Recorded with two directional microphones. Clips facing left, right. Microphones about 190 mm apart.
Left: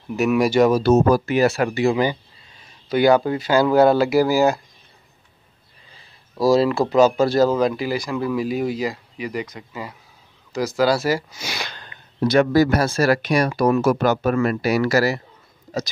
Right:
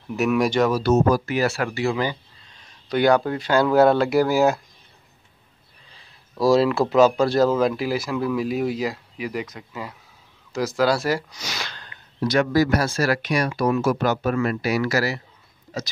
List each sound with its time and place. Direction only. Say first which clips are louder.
0.1 s speech: left 2 dB; centre (ahead or behind)
0.7 s speech: left 3 dB; 20° left (ahead or behind)
2.5 s speech: left 2 dB; 5° left (ahead or behind)
6.3 s speech: left 1 dB; centre (ahead or behind)
10.5 s a sound: left 2 dB; centre (ahead or behind); by 12.3 s 20° left (ahead or behind)
12.4 s speech: left 3 dB; 30° left (ahead or behind)